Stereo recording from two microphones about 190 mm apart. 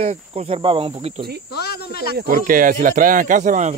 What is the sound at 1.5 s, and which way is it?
Cricket, 55° left (ahead or behind).